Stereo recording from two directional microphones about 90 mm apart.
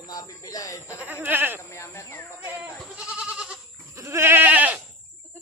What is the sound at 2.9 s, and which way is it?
Goat, 10° right (ahead or behind).